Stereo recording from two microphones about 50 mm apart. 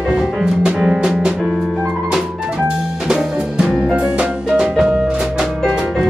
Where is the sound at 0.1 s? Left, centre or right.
Centre.